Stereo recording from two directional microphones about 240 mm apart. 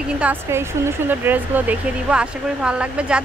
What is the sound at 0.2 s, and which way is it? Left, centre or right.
Speech, centre.